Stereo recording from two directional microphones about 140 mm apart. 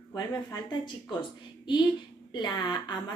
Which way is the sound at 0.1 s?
30° left (ahead or behind).